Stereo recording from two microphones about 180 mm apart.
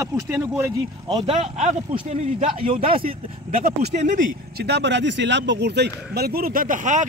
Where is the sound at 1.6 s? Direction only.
40° right (ahead or behind).